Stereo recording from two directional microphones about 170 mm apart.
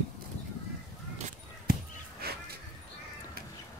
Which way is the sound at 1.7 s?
60° right (ahead or behind).